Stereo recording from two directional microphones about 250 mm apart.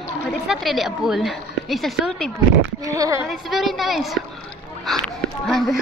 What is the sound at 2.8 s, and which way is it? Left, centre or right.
Speech, centre.